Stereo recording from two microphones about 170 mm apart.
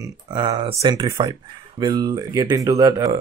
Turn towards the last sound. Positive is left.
turn(degrees=-20)  # may be behind; listen again after turning